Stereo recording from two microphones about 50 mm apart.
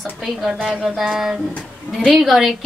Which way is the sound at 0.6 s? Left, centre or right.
Centre.